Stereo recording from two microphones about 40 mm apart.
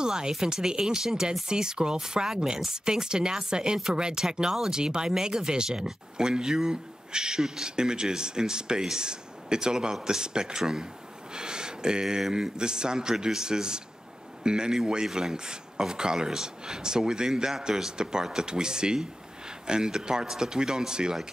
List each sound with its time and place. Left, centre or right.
0.0 s speech: centre
11.3 s a sound: centre
12.2 s speech: centre